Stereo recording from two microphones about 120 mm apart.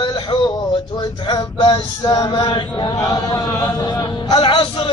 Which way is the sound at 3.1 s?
30° left (ahead or behind).